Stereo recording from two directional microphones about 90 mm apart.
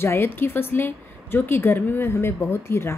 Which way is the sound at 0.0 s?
25° left (ahead or behind).